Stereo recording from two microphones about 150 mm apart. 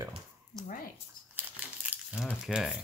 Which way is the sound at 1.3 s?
10° right (ahead or behind).